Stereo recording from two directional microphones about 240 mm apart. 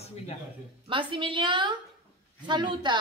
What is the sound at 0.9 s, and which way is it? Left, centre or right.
Speech, right.